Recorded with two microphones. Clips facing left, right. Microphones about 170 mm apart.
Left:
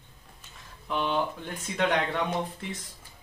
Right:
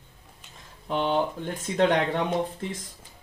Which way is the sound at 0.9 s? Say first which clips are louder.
Right 3 dB; 30° right (ahead or behind).